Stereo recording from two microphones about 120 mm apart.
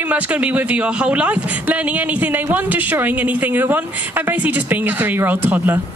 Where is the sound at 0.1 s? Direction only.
10° right (ahead or behind).